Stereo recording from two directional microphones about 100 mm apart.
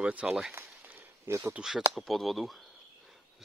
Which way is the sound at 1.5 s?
5° right (ahead or behind).